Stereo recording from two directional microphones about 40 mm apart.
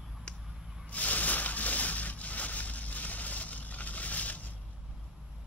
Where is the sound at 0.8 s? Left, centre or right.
Left.